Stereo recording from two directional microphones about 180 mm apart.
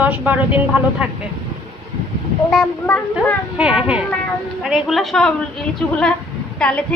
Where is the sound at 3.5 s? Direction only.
5° right (ahead or behind).